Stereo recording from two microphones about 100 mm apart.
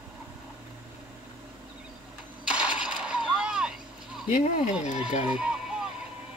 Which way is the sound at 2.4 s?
10° right (ahead or behind).